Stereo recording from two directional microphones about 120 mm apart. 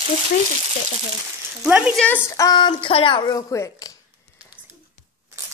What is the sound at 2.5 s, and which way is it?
Speech, 45° left (ahead or behind).